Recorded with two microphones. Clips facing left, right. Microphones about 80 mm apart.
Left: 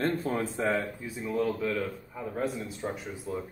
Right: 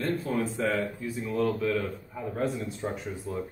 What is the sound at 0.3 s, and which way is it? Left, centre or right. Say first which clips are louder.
Speech: right 1 dB; left.